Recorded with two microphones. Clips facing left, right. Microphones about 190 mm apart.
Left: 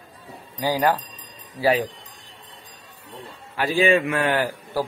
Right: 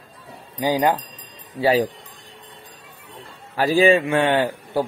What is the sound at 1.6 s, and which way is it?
Speech, 30° right (ahead or behind).